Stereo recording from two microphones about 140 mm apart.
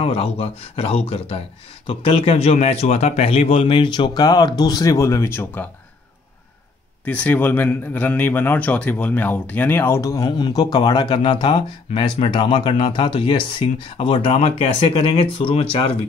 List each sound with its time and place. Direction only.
0.0 s speech: 45° left (ahead or behind); by 5.7 s 15° left (ahead or behind)
7.1 s speech: 10° left (ahead or behind)
10.2 s speech: 35° left (ahead or behind)